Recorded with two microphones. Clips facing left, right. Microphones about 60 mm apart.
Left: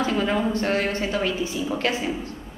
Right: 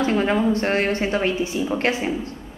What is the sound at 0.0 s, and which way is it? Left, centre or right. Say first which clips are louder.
A woman's voice: right 3 dB; right.